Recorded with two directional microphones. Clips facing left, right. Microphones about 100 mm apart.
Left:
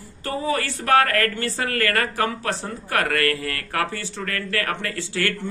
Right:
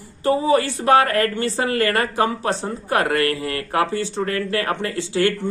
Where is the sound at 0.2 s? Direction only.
20° right (ahead or behind).